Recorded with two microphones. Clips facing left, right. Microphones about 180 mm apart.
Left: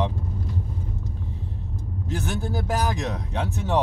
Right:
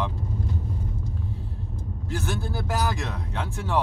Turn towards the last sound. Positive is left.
turn(degrees=20)  # may be behind; listen again after turning